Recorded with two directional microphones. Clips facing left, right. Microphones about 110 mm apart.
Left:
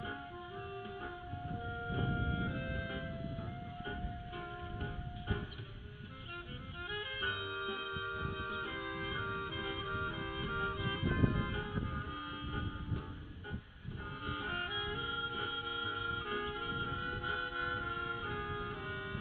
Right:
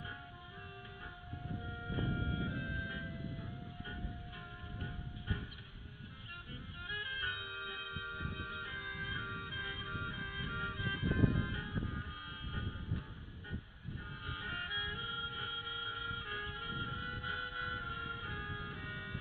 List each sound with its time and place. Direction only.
0.0 s music: 35° left (ahead or behind)
6.9 s music: 40° left (ahead or behind)
14.2 s music: 40° left (ahead or behind)